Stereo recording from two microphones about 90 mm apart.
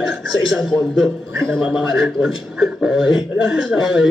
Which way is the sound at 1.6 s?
5° right (ahead or behind).